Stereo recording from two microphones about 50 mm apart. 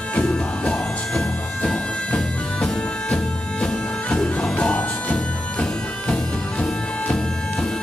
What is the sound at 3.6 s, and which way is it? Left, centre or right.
Music, centre.